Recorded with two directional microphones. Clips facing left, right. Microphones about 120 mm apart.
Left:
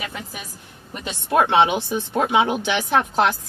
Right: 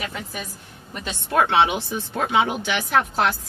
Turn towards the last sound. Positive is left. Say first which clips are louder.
# left 2 dB
turn(degrees=20)  # may be behind; listen again after turning